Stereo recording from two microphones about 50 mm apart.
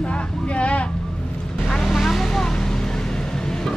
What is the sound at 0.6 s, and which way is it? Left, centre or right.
Vehicle, left.